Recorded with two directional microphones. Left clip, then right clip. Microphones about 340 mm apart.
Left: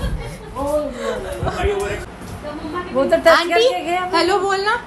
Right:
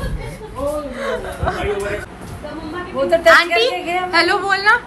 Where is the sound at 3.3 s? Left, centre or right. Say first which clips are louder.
Right 3 dB; centre.